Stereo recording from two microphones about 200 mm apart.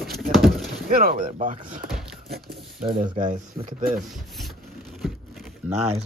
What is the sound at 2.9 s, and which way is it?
Speech, 40° right (ahead or behind).